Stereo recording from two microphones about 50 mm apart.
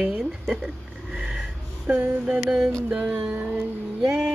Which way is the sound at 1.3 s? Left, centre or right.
Right.